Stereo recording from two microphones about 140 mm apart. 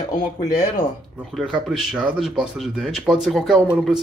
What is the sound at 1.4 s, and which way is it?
Speech, centre (ahead or behind).